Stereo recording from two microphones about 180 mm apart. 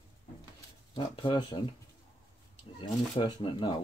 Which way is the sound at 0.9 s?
30° left (ahead or behind).